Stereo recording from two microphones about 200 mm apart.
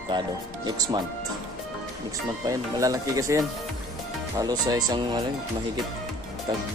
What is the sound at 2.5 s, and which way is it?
Speech, 15° right (ahead or behind).